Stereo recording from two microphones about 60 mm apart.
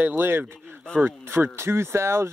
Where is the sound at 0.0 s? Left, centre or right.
Right.